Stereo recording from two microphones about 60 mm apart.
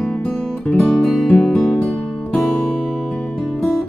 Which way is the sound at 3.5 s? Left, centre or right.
Centre.